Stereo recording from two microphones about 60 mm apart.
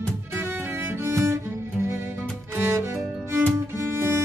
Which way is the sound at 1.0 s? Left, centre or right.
Right.